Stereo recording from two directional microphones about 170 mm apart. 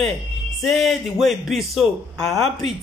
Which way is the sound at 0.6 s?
Centre (ahead or behind).